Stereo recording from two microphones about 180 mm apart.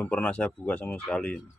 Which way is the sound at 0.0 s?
5° left (ahead or behind).